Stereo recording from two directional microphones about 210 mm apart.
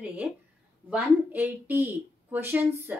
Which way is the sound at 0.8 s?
5° right (ahead or behind).